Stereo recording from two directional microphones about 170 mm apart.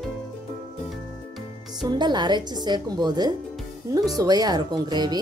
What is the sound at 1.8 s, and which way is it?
A woman's voice, 25° right (ahead or behind).